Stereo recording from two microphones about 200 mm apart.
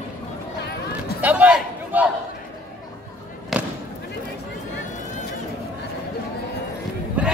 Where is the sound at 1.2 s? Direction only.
5° right (ahead or behind).